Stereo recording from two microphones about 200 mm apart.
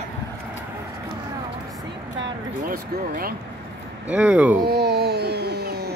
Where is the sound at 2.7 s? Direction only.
45° right (ahead or behind).